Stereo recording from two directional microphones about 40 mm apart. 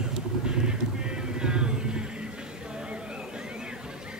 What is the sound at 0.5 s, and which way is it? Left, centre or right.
Music, right.